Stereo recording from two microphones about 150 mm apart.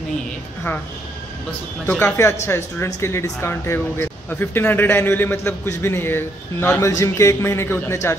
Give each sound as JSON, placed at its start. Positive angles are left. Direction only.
{"t": 1.9, "sound": "speech", "side_deg": 10}